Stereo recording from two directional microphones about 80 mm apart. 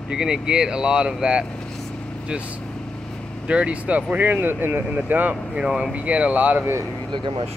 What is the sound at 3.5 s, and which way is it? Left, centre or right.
Speech, centre.